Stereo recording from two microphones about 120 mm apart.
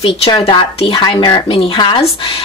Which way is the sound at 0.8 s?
40° left (ahead or behind).